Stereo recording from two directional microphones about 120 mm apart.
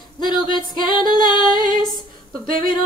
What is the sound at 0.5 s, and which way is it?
Female singing, 40° left (ahead or behind).